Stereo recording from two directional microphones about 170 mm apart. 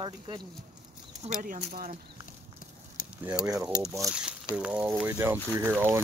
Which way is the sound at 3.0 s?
55° left (ahead or behind).